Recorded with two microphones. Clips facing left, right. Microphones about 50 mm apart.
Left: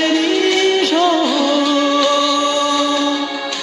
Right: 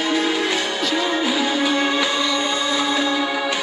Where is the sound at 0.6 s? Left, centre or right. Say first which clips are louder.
Left 8 dB; left.